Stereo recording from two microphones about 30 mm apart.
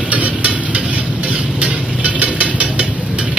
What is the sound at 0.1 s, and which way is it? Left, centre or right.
Engine, right.